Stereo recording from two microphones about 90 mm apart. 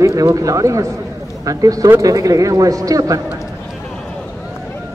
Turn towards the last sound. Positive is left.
turn(degrees=-40)  # may be behind; listen again after turning